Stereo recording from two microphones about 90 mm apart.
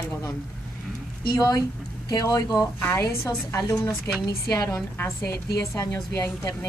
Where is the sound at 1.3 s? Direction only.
50° left (ahead or behind).